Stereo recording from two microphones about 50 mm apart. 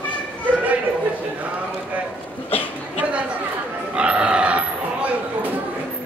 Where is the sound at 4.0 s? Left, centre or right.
Right.